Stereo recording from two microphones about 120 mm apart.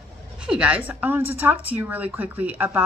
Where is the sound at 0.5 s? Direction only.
10° right (ahead or behind).